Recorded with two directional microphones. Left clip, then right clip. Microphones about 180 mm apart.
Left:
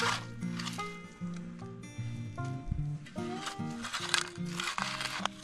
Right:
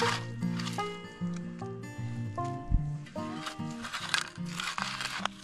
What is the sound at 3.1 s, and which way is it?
Music, centre (ahead or behind).